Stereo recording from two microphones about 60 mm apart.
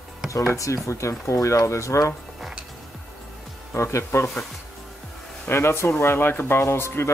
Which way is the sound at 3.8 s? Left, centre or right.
Left.